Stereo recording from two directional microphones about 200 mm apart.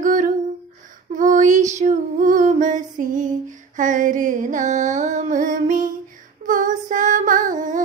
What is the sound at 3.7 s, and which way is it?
Music, 40° right (ahead or behind).